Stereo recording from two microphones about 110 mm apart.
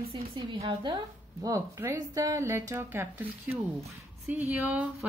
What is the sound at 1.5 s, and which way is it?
A woman's voice, 25° right (ahead or behind).